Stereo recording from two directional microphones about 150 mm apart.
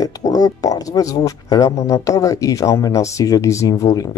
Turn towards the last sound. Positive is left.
turn(degrees=20)  # may be behind; listen again after turning